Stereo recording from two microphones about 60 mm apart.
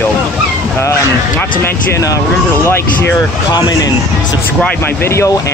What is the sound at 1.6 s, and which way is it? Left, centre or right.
Speech, left.